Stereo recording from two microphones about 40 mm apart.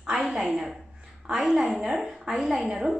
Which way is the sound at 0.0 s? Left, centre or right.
Right.